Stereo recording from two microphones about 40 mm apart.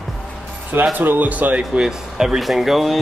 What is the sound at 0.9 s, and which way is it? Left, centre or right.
Speech, right.